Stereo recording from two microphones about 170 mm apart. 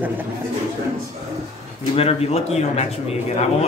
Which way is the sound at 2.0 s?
35° left (ahead or behind).